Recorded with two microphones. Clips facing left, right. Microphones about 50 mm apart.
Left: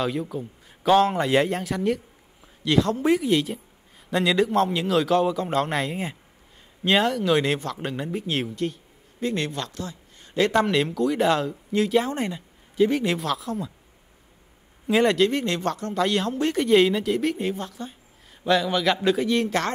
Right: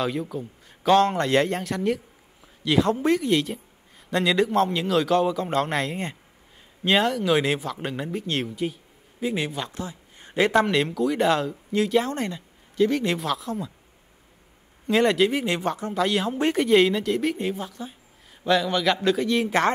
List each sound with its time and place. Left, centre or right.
0.0 s a man's voice: centre
2.4 s a sound: centre
3.0 s a man's voice: centre
9.7 s a sound: right
10.5 s a man's voice: centre
12.1 s a man's voice: centre
14.9 s a man's voice: centre